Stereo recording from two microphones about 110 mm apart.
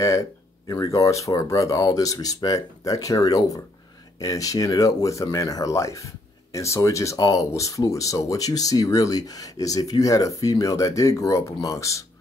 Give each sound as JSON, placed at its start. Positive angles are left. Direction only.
{"t": 0.0, "sound": "speech", "side_deg": 30}